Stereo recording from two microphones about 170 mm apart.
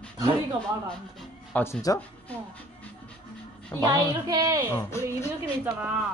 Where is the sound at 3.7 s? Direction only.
20° left (ahead or behind).